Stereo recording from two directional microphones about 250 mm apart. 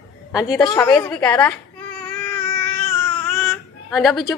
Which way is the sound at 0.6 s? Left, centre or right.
Centre.